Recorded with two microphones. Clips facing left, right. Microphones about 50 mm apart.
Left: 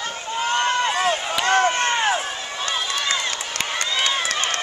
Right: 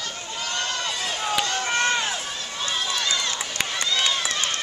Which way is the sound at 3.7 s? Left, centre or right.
Left.